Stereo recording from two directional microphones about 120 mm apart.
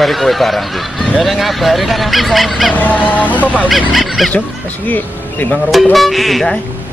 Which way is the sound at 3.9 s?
Centre (ahead or behind).